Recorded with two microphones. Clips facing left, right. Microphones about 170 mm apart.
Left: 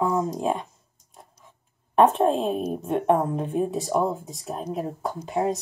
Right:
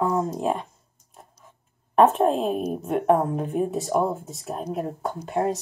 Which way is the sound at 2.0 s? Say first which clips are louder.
Right 1 dB; centre (ahead or behind).